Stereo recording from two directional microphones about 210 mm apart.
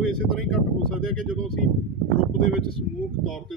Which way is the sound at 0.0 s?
5° left (ahead or behind).